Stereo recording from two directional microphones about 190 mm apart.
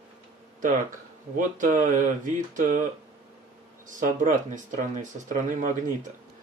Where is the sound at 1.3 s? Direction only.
45° right (ahead or behind).